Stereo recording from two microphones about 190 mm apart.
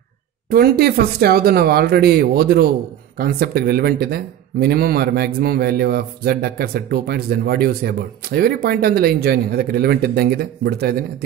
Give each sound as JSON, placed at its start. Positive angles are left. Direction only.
{"t": 0.5, "sound": "speech", "side_deg": -55}